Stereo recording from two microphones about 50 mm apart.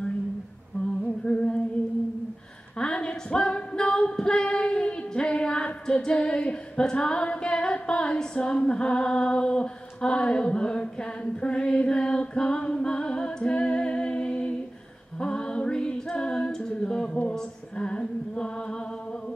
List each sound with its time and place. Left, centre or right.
1.0 s a sound: left
2.8 s singing: centre
15.1 s a capella: centre